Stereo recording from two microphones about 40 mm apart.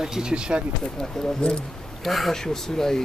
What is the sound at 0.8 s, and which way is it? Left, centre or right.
Speech, centre.